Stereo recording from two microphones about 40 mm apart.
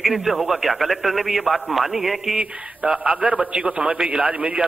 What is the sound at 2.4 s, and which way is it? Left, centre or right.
A man's voice, centre.